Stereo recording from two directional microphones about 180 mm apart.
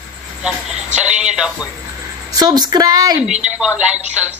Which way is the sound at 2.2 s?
20° right (ahead or behind).